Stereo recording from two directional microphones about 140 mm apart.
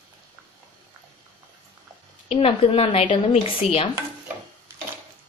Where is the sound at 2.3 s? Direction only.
45° left (ahead or behind).